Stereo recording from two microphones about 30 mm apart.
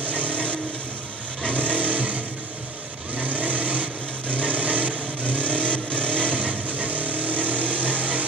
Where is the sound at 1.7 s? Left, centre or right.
Right.